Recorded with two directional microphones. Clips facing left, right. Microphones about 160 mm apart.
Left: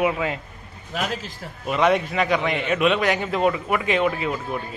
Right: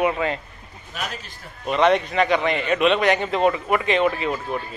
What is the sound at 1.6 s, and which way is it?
A man's voice, 5° left (ahead or behind).